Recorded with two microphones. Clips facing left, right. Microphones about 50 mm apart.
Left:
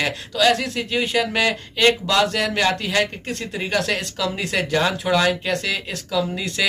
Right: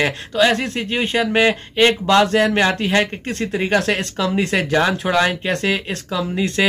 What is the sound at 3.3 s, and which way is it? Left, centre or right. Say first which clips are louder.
Speech: right 6 dB; right.